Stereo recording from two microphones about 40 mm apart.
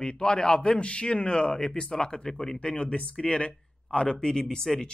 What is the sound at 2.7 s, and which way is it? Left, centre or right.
A man's voice, left.